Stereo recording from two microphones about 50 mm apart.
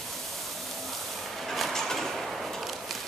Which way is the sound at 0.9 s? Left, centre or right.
Centre.